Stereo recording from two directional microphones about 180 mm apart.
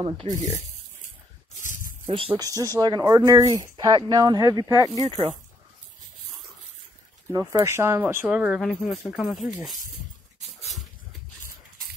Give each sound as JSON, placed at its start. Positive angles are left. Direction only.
{"t": 0.2, "sound": "speech", "side_deg": -30}
{"t": 1.6, "sound": "a sound", "side_deg": 45}
{"t": 2.0, "sound": "speech", "side_deg": -30}
{"t": 5.0, "sound": "speech", "side_deg": -35}
{"t": 7.3, "sound": "speech", "side_deg": -15}